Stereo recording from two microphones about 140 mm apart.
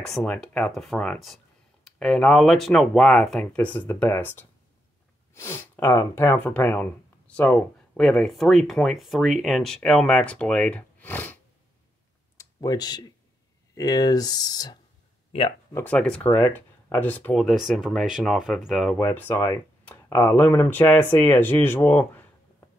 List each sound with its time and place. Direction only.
0.0 s speech: 5° left (ahead or behind)
12.4 s speech: 25° left (ahead or behind)
15.7 s speech: 10° left (ahead or behind)
18.9 s speech: 15° left (ahead or behind)